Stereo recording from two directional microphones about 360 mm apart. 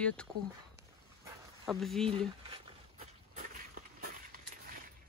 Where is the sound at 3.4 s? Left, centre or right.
Right.